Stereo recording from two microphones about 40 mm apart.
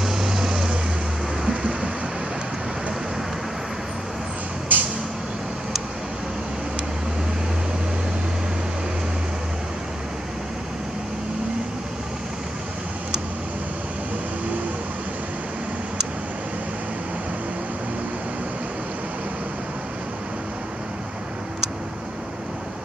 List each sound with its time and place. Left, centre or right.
0.0 s vehicle: centre
1.5 s a sound: right
4.7 s vehicle: right